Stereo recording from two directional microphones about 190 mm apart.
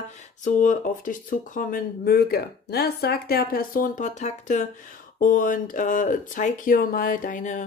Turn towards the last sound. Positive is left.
turn(degrees=40)  # may be behind; listen again after turning